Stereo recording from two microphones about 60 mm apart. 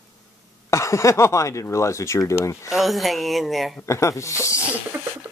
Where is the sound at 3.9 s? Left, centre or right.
Left.